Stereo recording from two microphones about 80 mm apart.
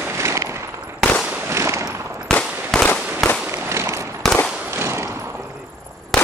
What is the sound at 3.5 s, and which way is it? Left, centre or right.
Firecracker, right.